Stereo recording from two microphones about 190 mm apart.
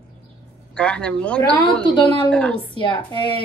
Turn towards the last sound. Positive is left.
turn(degrees=25)  # may be behind; listen again after turning